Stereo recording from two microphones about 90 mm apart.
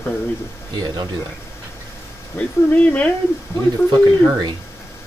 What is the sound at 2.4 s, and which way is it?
Speech, 15° left (ahead or behind).